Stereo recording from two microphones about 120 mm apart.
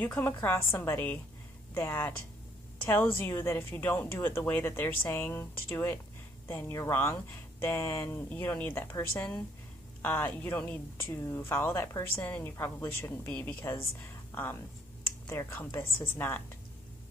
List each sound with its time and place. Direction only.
0.0 s a woman's voice: 15° left (ahead or behind)